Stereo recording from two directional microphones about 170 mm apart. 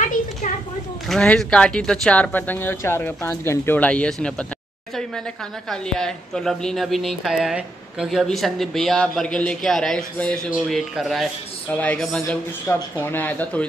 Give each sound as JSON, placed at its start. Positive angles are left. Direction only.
{"t": 0.0, "sound": "a sound", "side_deg": 45}
{"t": 1.0, "sound": "speech", "side_deg": 5}
{"t": 5.7, "sound": "a woman's voice", "side_deg": 5}